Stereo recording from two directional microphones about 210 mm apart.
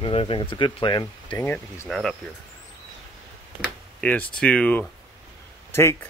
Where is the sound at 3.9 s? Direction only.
5° left (ahead or behind).